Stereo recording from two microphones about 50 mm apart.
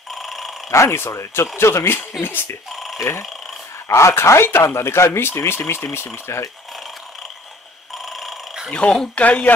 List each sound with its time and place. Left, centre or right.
0.1 s telephone bell ringing: centre
0.7 s speech: left
2.2 s speech: left
2.7 s telephone bell ringing: centre
3.0 s speech: left
6.2 s speech: left
7.9 s a sound: centre
8.6 s speech: centre
9.2 s speech: left